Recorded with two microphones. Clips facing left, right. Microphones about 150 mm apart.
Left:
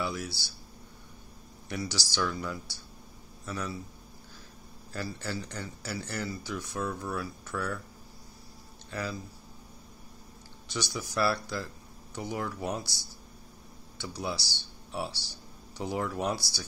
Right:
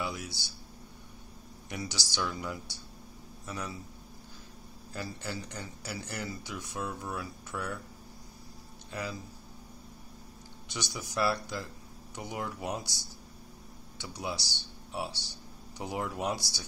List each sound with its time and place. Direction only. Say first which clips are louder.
0.0 s speech: left 3 dB; 15° right (ahead or behind)
1.7 s speech: left 3 dB; 15° right (ahead or behind)
4.9 s speech: left 3 dB; 15° right (ahead or behind)
8.9 s speech: left 2 dB; 15° right (ahead or behind)
10.7 s speech: left 4 dB; 15° right (ahead or behind)
13.9 s speech: left 2 dB; 15° right (ahead or behind)